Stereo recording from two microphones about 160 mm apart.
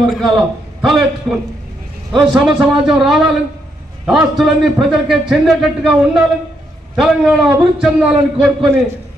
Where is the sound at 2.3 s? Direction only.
Centre (ahead or behind).